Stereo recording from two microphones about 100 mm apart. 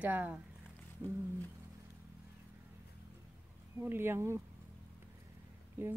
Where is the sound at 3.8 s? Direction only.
20° right (ahead or behind).